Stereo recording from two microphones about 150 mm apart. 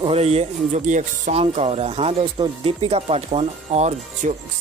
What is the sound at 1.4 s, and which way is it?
Speech, 45° right (ahead or behind).